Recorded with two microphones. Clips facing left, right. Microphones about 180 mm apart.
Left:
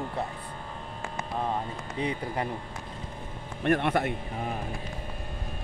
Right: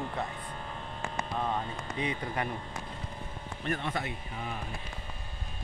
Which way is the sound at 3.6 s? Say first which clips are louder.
Left 9 dB; 65° left (ahead or behind).